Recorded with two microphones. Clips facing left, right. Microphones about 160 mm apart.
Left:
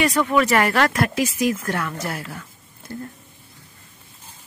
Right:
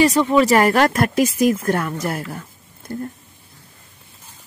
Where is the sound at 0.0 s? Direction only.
30° right (ahead or behind).